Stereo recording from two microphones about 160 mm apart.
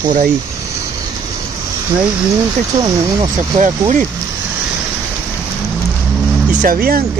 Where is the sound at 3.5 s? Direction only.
50° right (ahead or behind).